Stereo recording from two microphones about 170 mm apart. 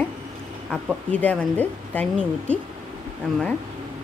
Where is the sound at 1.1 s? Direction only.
5° left (ahead or behind).